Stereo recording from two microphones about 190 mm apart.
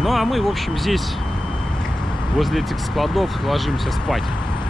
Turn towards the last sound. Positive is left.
turn(degrees=0)  # may be behind; listen again after turning